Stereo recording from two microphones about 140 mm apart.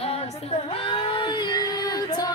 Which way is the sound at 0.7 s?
40° left (ahead or behind).